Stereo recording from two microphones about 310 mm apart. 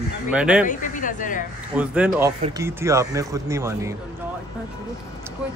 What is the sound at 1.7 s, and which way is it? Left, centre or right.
Speech, centre.